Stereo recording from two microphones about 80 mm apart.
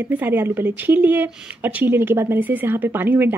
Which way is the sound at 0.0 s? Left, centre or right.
Right.